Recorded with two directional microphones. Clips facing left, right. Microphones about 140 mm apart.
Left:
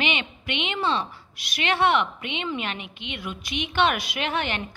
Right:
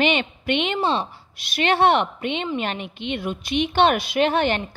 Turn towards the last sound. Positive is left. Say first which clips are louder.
# right 8 dB
turn(degrees=-35)  # may be behind; listen again after turning